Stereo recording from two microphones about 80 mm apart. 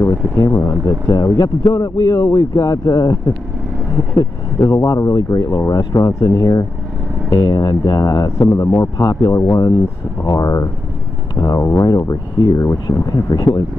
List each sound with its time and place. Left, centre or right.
0.0 s speech: left
4.6 s speech: left
11.8 s speech: left
12.9 s speech: left